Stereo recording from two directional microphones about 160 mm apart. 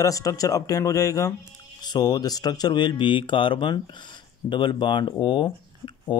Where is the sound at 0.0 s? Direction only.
20° left (ahead or behind).